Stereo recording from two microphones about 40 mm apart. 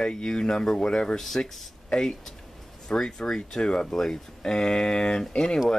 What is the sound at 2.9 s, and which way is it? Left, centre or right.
Speech, centre.